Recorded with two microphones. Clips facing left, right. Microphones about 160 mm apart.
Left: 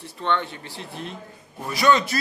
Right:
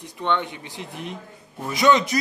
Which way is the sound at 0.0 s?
15° right (ahead or behind).